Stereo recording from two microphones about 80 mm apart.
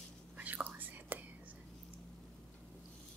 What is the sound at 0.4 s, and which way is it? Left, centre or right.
Whispering, centre.